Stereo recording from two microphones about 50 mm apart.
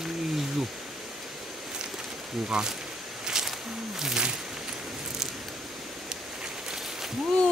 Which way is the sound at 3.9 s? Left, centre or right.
Centre.